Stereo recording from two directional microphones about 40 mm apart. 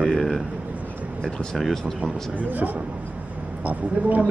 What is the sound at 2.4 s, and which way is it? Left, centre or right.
A man's voice, right.